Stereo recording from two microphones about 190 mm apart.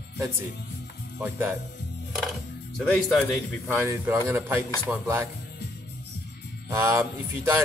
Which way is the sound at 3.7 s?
10° right (ahead or behind).